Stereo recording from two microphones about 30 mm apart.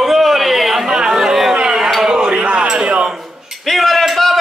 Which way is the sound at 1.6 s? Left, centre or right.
Right.